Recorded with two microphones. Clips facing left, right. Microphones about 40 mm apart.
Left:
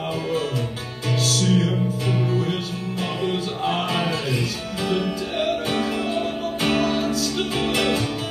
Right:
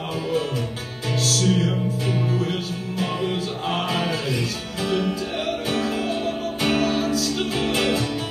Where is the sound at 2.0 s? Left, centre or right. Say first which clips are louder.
Left 1 dB; centre.